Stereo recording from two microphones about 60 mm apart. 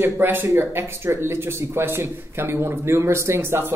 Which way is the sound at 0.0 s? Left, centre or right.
Right.